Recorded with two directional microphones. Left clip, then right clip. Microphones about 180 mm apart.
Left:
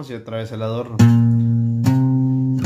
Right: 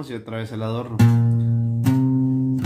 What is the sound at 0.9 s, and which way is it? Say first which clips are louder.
Music: left 6 dB; 40° left (ahead or behind).